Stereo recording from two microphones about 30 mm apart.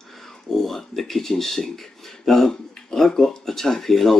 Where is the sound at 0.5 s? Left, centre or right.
Centre.